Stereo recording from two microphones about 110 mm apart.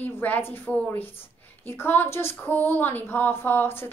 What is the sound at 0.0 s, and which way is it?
A woman's voice, 15° left (ahead or behind).